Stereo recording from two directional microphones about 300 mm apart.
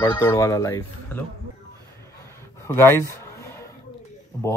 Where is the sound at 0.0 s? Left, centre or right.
Centre.